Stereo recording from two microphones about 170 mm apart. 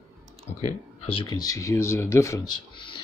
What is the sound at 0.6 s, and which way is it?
Speech, 30° left (ahead or behind).